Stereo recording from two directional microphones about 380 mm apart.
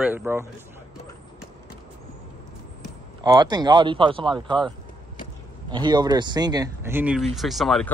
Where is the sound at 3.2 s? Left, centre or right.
Centre.